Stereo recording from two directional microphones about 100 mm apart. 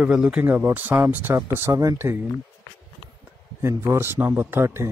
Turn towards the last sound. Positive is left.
turn(degrees=-25)  # may be behind; listen again after turning